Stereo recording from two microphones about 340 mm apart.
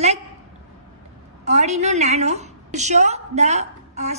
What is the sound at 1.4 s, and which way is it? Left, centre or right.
A woman's voice, centre.